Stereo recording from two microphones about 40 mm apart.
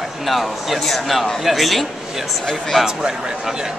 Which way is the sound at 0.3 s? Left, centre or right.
Centre.